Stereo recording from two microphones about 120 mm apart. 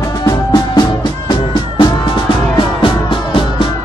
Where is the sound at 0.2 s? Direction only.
35° left (ahead or behind).